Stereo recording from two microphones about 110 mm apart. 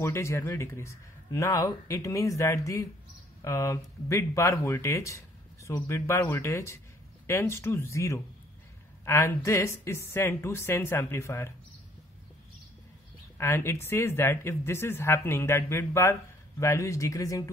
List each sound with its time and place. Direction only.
0.0 s speech: 25° left (ahead or behind)
13.4 s speech: 20° left (ahead or behind)